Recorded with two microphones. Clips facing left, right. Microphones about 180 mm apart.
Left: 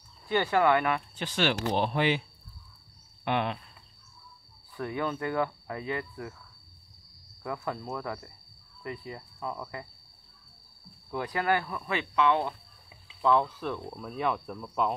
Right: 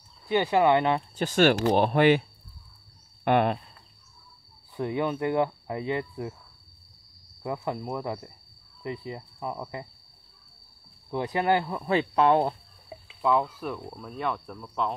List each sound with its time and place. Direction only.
0.3 s speech: 20° right (ahead or behind)
1.1 s speech: 45° right (ahead or behind)
3.3 s speech: 50° right (ahead or behind)
4.7 s speech: 20° right (ahead or behind)
7.4 s speech: 20° right (ahead or behind)
11.1 s speech: 25° right (ahead or behind); by 13.0 s 40° right (ahead or behind)
13.2 s speech: 10° right (ahead or behind)